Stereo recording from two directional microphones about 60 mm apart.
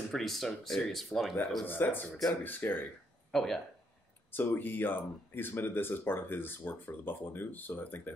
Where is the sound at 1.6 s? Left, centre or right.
Left.